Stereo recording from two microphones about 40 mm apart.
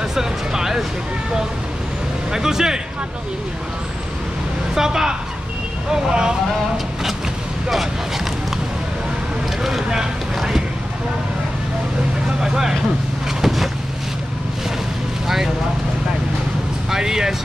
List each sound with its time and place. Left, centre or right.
0.1 s speech: centre
2.3 s speech: centre
4.7 s speech: centre
9.6 s speech: centre
12.4 s speech: centre
13.4 s vehicle: centre
15.2 s speech: centre
16.9 s speech: centre